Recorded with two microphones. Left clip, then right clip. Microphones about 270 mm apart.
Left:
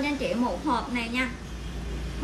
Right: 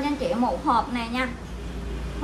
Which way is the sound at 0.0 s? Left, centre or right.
Centre.